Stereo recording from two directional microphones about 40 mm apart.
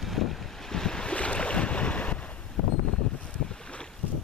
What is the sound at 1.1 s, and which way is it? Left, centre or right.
Boat, left.